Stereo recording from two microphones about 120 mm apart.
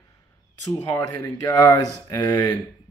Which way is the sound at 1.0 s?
35° left (ahead or behind).